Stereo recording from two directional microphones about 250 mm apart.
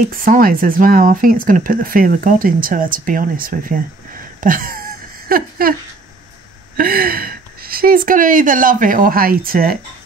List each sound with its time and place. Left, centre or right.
0.1 s speech: right
5.3 s a sound: right
6.8 s speech: right